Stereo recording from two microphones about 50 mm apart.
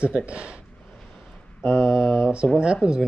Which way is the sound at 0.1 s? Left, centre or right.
Right.